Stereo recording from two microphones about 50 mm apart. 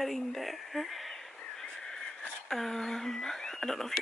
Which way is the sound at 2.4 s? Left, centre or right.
Centre.